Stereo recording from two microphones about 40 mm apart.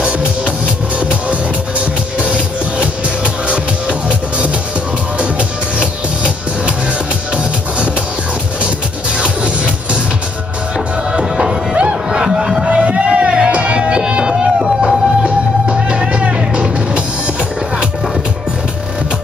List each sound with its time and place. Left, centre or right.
0.0 s music: right
5.8 s music: right
11.1 s music: right
12.3 s music: centre
12.6 s a sound: right
13.5 s music: right